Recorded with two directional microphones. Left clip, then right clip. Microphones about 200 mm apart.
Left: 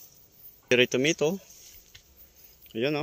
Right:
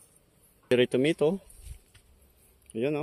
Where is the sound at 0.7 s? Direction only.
20° right (ahead or behind).